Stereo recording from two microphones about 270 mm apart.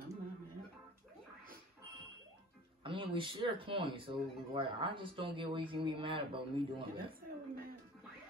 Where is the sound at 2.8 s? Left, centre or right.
Centre.